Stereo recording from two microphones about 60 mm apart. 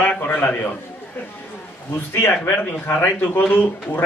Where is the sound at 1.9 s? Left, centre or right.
Left.